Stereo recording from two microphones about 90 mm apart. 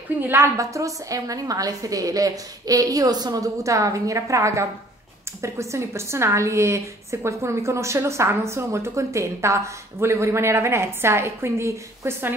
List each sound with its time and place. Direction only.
0.3 s a woman's voice: 35° right (ahead or behind)